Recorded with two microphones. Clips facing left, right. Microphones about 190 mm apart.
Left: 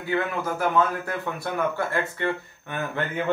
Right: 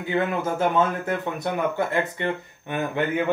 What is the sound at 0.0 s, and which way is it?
Speech, 20° right (ahead or behind).